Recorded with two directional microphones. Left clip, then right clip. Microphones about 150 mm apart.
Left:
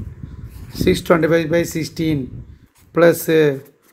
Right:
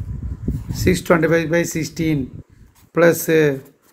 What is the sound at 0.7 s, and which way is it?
Speech, 20° left (ahead or behind).